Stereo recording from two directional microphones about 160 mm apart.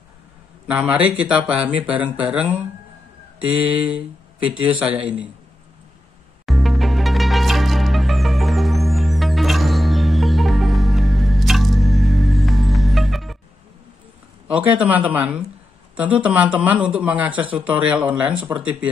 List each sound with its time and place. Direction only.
0.7 s speech: 10° right (ahead or behind)
4.5 s speech: 5° right (ahead or behind)
6.4 s music: centre (ahead or behind)
14.5 s speech: 10° right (ahead or behind)